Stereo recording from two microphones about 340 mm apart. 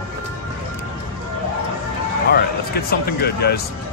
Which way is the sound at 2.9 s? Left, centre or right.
Left.